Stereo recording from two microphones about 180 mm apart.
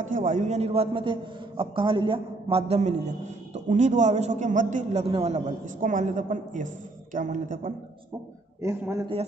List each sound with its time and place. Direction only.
0.0 s a man's voice: 45° right (ahead or behind)
8.6 s a man's voice: 15° right (ahead or behind)